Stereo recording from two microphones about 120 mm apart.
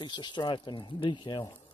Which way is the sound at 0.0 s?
40° left (ahead or behind).